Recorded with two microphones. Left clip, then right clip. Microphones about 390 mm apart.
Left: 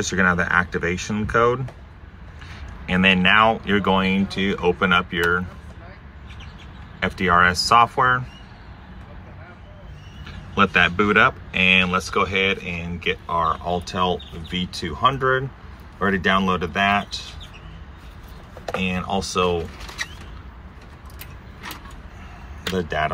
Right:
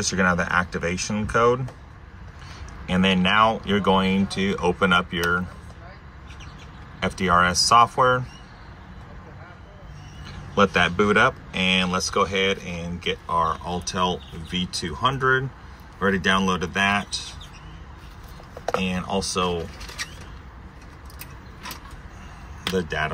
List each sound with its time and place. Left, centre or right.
0.0 s speech: centre
2.9 s speech: centre
7.0 s speech: centre
11.0 s speech: centre
19.2 s speech: centre
22.8 s speech: centre